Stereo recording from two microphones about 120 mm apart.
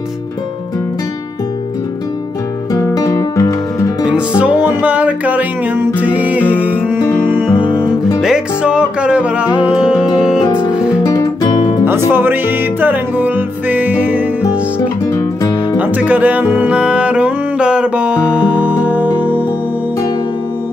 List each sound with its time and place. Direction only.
2.7 s guitar: 30° left (ahead or behind)
4.4 s music: 10° right (ahead or behind)
11.1 s guitar: 25° left (ahead or behind)
11.8 s music: 20° right (ahead or behind)
15.1 s music: 30° left (ahead or behind)
15.8 s music: 15° right (ahead or behind)